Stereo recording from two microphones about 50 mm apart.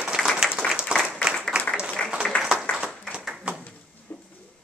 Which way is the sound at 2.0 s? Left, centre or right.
Left.